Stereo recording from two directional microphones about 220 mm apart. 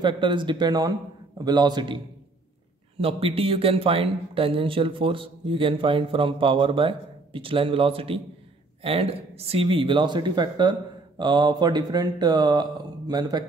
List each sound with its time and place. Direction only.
0.0 s speech: 20° right (ahead or behind)
3.0 s speech: 25° right (ahead or behind)